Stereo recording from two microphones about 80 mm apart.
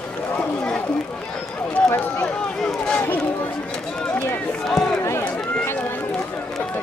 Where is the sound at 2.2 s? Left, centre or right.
Centre.